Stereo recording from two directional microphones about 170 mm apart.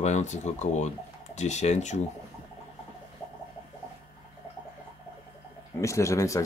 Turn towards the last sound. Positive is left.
turn(degrees=20)  # may be behind; listen again after turning